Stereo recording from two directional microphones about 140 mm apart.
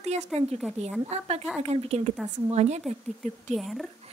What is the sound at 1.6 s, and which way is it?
Speech, 50° right (ahead or behind).